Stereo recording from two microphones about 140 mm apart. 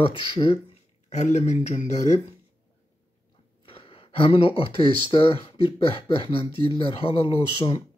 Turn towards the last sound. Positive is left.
turn(degrees=35)  # may be behind; listen again after turning